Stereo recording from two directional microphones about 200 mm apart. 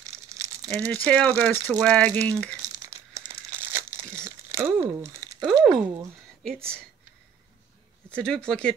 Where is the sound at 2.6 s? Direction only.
20° right (ahead or behind).